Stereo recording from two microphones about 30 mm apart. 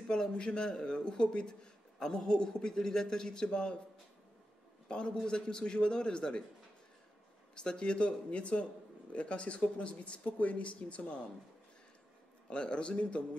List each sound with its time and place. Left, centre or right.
0.1 s a man's voice: left
4.8 s a man's voice: left
7.5 s speech: left
12.4 s speech: left